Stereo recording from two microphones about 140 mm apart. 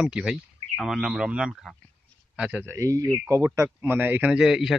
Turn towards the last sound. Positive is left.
turn(degrees=-5)  # may be behind; listen again after turning